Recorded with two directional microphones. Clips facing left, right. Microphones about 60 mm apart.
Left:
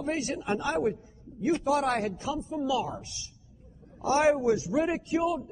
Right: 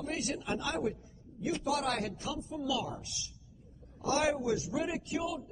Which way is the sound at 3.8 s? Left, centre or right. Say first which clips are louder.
Left 7 dB; left.